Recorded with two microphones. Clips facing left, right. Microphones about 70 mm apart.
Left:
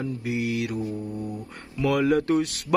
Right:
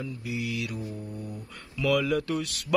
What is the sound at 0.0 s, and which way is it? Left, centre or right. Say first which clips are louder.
Mantra: left 6 dB; left.